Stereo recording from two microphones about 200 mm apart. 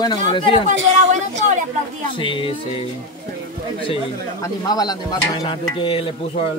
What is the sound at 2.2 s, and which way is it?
Speech, 25° left (ahead or behind).